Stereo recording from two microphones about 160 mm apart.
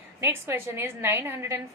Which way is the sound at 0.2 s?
15° right (ahead or behind).